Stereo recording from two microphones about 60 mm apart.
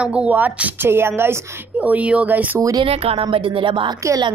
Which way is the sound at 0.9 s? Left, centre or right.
Right.